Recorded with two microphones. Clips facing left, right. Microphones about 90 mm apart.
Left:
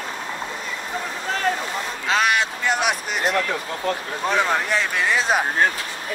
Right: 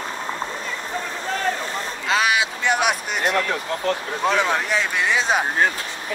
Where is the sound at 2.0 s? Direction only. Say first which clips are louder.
Even; centre (ahead or behind).